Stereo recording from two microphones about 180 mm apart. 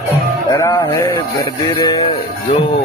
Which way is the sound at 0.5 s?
15° left (ahead or behind).